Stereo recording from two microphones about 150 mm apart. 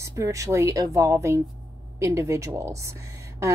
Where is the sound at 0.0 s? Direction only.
20° right (ahead or behind).